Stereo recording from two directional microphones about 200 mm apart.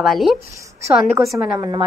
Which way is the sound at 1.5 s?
20° right (ahead or behind).